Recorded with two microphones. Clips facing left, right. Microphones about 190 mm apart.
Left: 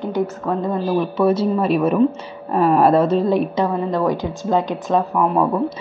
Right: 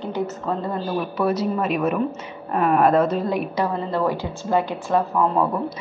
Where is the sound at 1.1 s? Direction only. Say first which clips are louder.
Left 4 dB; 25° left (ahead or behind).